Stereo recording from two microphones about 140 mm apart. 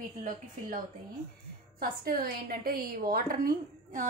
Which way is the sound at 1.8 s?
90° right.